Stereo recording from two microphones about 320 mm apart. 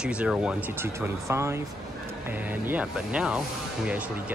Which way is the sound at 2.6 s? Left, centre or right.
Centre.